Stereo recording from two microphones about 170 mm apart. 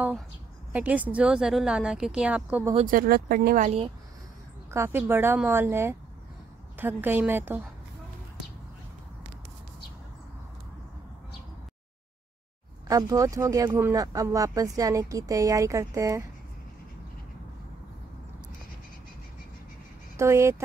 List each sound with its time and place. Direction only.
0.7 s speech: 10° right (ahead or behind)
2.9 s speech: 55° right (ahead or behind); by 3.9 s 40° right (ahead or behind)
4.6 s speech: 15° right (ahead or behind)
12.8 s speech: 20° right (ahead or behind)
20.2 s speech: 15° right (ahead or behind)